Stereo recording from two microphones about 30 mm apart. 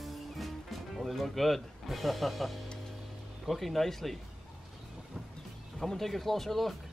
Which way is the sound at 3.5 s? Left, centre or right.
Centre.